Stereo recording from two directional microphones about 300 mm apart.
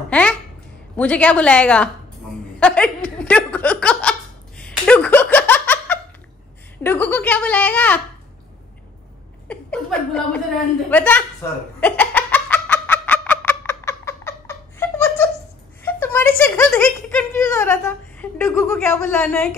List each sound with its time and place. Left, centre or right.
0.1 s babbling: centre
0.9 s speech: centre
2.6 s a sound: centre
6.8 s speech: centre
9.5 s chuckle: centre
10.9 s speech: centre
11.8 s giggle: centre
15.8 s a sound: centre
17.4 s speech: centre